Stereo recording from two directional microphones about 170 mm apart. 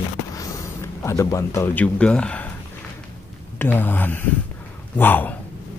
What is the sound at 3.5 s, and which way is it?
Speech, 10° left (ahead or behind).